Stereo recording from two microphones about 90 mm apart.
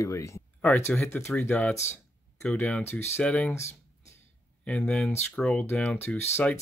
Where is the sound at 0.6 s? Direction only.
15° left (ahead or behind).